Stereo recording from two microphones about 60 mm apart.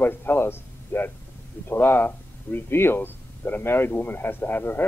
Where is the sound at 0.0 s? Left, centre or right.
Left.